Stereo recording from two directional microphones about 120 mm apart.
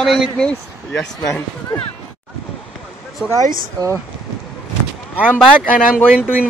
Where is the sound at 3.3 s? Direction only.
25° right (ahead or behind).